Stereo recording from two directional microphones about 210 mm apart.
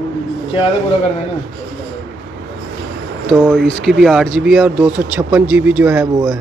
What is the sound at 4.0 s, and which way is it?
Speech, centre (ahead or behind).